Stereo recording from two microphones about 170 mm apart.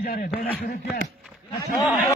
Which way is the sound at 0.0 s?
60° left (ahead or behind).